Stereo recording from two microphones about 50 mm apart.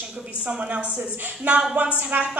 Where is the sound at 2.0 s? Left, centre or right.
Right.